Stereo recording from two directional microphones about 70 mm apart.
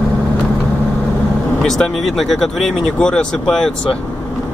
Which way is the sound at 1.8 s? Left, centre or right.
Centre.